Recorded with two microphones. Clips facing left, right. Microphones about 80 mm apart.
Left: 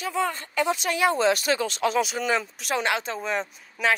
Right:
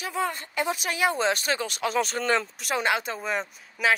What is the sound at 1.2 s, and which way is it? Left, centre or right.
Speech, right.